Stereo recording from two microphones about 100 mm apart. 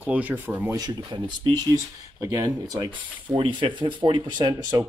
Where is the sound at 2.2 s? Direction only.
35° right (ahead or behind).